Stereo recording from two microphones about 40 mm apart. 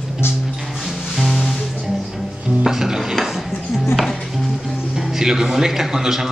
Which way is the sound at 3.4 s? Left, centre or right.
Centre.